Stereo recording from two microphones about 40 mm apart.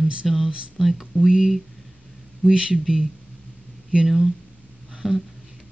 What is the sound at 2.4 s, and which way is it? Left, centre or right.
Speech, right.